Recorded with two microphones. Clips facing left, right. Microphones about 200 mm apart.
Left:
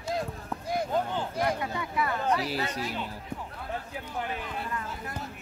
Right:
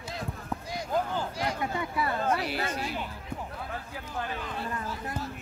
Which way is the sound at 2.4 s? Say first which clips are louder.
Left 1 dB; 35° left (ahead or behind).